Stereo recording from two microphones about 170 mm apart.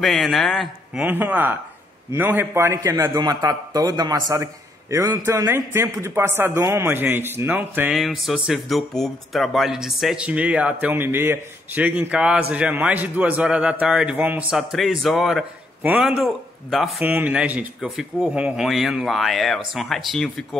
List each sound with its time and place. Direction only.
0.0 s speech: centre (ahead or behind)
1.0 s a man's voice: 10° right (ahead or behind)